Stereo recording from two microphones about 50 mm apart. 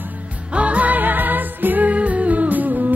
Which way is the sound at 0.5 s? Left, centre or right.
Right.